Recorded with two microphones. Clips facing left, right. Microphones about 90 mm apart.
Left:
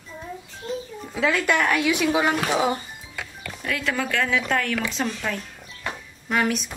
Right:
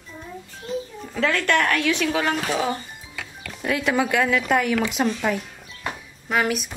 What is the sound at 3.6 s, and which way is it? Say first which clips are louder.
Speech: right 5 dB; 20° right (ahead or behind).